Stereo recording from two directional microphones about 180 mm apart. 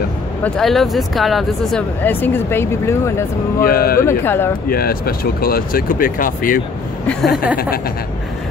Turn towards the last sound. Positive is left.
turn(degrees=0)  # may be behind; listen again after turning